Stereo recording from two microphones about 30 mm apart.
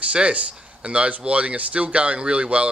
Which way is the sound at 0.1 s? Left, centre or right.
Right.